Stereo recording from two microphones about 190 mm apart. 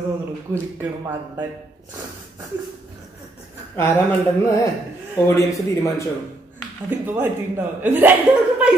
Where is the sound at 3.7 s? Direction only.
15° left (ahead or behind).